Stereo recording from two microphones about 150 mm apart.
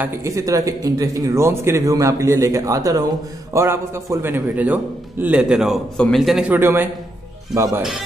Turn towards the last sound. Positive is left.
turn(degrees=-20)  # may be behind; listen again after turning